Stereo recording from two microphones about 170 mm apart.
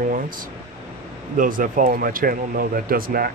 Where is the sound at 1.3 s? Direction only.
50° right (ahead or behind).